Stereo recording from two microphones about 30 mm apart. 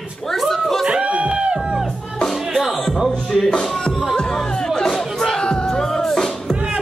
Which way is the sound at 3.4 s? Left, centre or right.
Left.